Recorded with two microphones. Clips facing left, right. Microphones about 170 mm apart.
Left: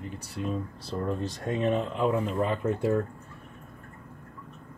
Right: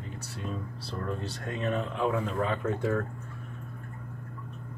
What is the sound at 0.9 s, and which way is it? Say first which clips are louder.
Speech: left 4 dB; 15° left (ahead or behind).